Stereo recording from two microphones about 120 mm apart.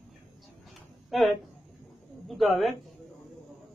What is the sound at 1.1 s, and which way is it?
A man's voice, centre (ahead or behind).